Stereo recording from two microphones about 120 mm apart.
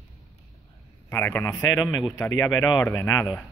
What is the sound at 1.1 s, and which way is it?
A man's voice, 20° left (ahead or behind).